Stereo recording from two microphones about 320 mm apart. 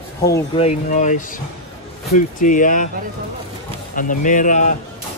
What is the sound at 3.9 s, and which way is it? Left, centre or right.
Speech, left.